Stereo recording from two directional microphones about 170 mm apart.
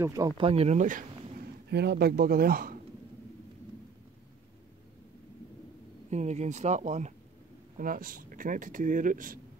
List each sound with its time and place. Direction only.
0.0 s speech: 20° right (ahead or behind)
0.4 s speech: 35° right (ahead or behind)
1.7 s speech: 75° right (ahead or behind)
6.0 s speech: 40° right (ahead or behind)
7.7 s speech: 55° right (ahead or behind)